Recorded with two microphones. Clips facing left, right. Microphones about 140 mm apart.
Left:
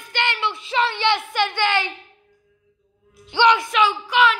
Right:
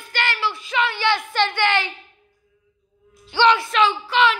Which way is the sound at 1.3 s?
15° left (ahead or behind).